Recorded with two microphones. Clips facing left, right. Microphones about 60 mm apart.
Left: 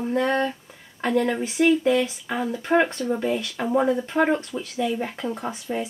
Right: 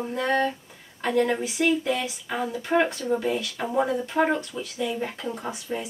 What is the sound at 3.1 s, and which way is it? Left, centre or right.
Speech, centre.